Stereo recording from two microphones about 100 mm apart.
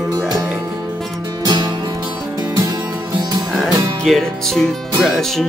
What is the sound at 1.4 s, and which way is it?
Music, 45° right (ahead or behind).